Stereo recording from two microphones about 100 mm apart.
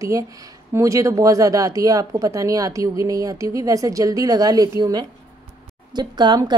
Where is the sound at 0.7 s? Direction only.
30° right (ahead or behind).